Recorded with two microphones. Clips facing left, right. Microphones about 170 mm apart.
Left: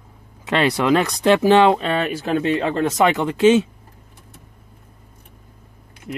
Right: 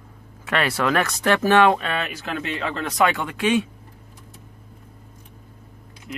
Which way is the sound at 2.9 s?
20° left (ahead or behind).